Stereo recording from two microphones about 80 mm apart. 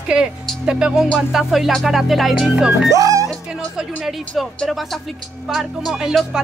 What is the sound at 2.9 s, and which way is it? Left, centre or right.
Speech, right.